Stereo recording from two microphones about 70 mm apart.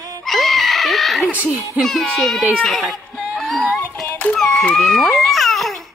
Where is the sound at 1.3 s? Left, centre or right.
Right.